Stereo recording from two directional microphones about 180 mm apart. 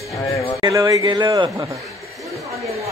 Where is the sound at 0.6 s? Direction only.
20° right (ahead or behind).